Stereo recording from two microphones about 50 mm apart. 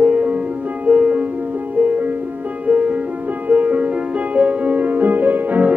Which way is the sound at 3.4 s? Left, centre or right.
Right.